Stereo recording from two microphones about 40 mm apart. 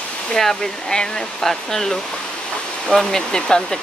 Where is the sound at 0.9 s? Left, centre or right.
Centre.